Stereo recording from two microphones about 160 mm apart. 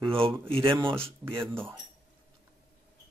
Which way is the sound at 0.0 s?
35° right (ahead or behind).